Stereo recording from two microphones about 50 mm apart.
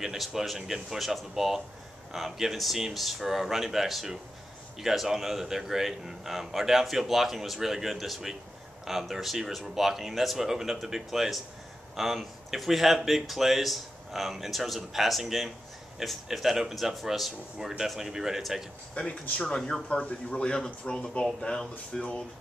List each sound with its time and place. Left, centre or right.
0.0 s speech: centre
18.9 s speech: left
19.4 s speech: centre
19.9 s speech: left